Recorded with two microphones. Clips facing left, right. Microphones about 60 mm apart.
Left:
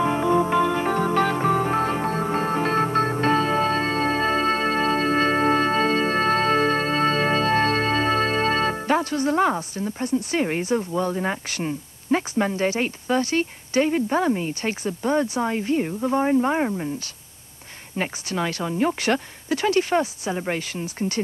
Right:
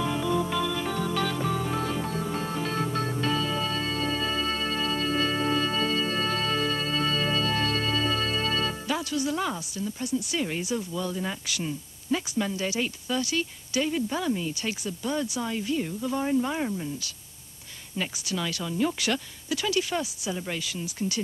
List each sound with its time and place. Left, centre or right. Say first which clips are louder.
0.0 s music: left 7 dB; left
17.9 s a woman's voice: left 5 dB; left